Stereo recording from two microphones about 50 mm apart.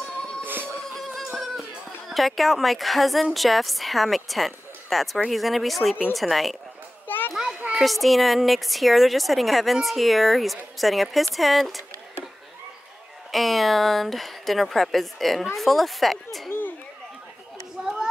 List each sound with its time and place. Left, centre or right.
0.5 s music: right
1.3 s music: centre
2.0 s a woman's voice: centre
7.1 s children playing: left
7.7 s a woman's voice: centre
13.3 s a woman's voice: centre
17.8 s children playing: centre